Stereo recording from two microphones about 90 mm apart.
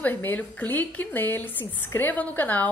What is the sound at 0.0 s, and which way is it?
A woman's voice, 25° left (ahead or behind).